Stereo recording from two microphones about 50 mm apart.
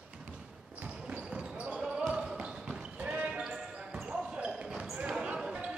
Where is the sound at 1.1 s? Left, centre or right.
Right.